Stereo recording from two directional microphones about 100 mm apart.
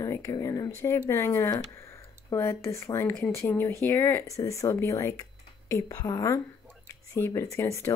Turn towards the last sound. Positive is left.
turn(degrees=25)  # may be behind; listen again after turning